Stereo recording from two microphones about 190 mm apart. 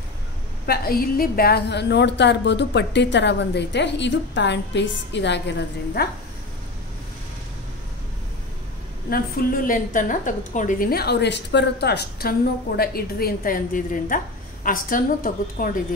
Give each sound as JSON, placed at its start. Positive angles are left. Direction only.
{"t": 0.7, "sound": "a woman's voice", "side_deg": 50}
{"t": 9.1, "sound": "a woman's voice", "side_deg": 50}